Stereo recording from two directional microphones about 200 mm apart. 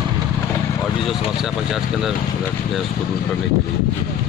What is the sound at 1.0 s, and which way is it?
Speech, centre (ahead or behind).